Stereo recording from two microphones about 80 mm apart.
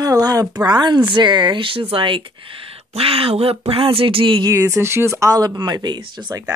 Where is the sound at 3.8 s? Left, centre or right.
Right.